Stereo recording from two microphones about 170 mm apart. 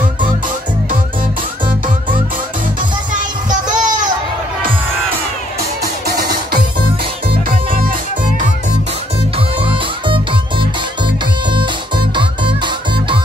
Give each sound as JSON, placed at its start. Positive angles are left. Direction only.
{"t": 3.1, "sound": "child singing", "side_deg": -50}
{"t": 9.6, "sound": "music", "side_deg": -30}
{"t": 12.2, "sound": "music", "side_deg": -30}